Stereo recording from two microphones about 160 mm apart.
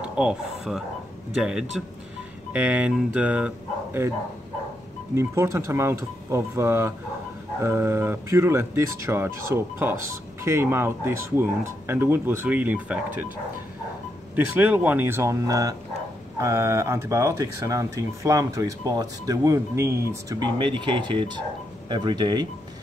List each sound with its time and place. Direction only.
0.0 s speech: 5° right (ahead or behind)
5.1 s speech: 15° right (ahead or behind)
14.3 s speech: 10° right (ahead or behind); by 22.5 s 25° right (ahead or behind)